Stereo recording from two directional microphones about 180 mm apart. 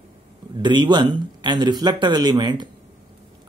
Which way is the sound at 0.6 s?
25° right (ahead or behind).